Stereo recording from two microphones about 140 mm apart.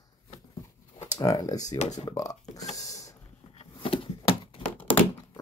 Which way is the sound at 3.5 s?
40° left (ahead or behind).